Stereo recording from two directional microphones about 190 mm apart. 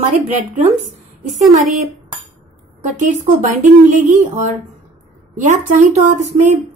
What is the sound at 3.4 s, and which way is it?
Speech, 40° right (ahead or behind).